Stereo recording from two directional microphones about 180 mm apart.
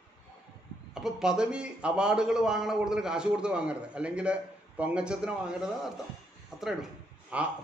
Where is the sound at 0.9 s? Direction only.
5° right (ahead or behind).